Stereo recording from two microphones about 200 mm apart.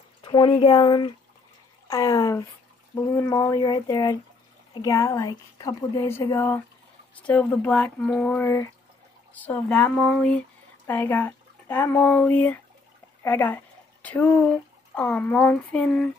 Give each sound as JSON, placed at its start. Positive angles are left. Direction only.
{"t": 0.2, "sound": "speech", "side_deg": 25}